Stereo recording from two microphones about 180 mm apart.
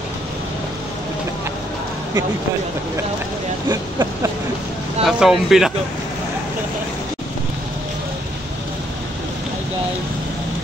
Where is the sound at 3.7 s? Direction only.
20° right (ahead or behind).